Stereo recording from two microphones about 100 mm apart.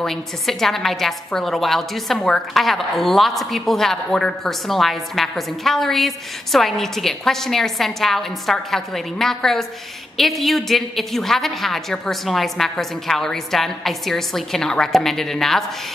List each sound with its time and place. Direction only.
0.0 s a woman's voice: 5° left (ahead or behind)